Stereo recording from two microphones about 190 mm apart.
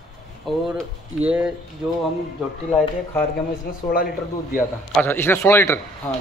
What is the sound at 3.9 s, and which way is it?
Speech, 50° left (ahead or behind).